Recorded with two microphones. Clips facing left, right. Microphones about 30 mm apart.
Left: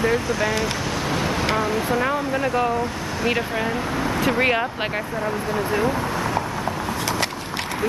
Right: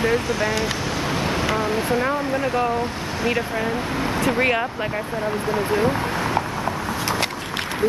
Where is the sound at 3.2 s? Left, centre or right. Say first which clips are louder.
Even; centre.